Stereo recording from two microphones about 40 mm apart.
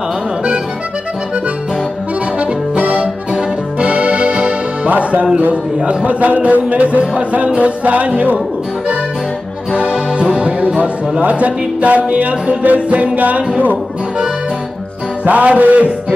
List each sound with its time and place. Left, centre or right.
2.7 s accordion: right
6.0 s speech: right
9.8 s music: right
10.8 s speech: right
15.2 s speech: right